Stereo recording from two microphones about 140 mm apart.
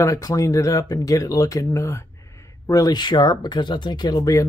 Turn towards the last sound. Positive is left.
turn(degrees=25)  # may be behind; listen again after turning